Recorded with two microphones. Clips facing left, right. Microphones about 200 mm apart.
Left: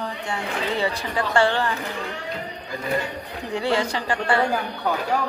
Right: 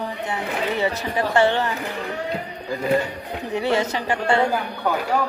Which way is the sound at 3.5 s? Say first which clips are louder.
Right 1 dB; 20° right (ahead or behind).